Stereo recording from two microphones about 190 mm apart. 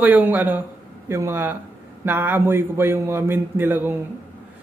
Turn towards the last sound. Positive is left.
turn(degrees=-10)  # may be behind; listen again after turning